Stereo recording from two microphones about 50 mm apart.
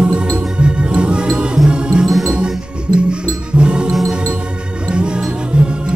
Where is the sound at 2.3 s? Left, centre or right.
Centre.